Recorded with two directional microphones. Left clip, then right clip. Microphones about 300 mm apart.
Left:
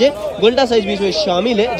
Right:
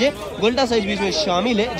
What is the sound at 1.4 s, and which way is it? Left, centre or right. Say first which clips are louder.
Speech: left 5 dB; centre.